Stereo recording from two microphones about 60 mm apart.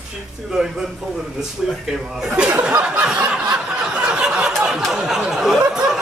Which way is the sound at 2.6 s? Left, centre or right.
Centre.